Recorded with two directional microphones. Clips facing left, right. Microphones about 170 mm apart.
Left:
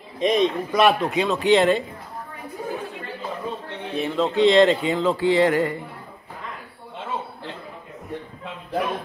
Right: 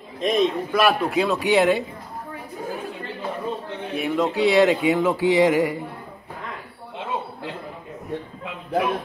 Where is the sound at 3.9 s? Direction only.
10° right (ahead or behind).